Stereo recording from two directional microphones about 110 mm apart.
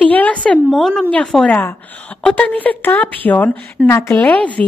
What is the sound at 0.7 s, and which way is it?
A woman's voice, 5° left (ahead or behind).